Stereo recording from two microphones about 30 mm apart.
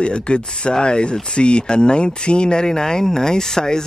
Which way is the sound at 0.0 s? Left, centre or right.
Left.